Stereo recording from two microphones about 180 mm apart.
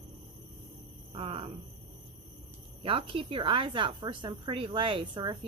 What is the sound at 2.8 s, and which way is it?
A woman's voice, 30° right (ahead or behind).